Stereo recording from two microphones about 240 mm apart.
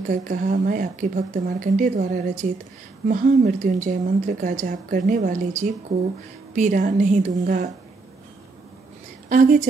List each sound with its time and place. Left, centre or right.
0.1 s speech: right
9.3 s speech: right